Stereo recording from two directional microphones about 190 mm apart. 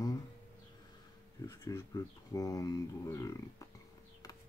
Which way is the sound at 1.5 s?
20° left (ahead or behind).